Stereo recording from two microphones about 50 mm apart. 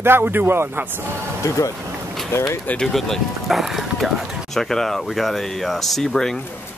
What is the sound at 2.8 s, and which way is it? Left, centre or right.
Speech, centre.